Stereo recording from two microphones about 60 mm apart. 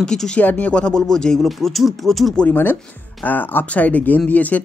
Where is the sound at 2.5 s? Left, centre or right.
Left.